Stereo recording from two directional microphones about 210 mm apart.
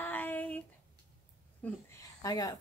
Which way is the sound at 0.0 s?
10° left (ahead or behind).